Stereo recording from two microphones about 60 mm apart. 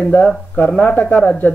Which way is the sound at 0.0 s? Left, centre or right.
Left.